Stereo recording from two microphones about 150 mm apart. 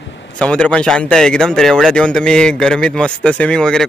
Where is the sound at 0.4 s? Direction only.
5° left (ahead or behind).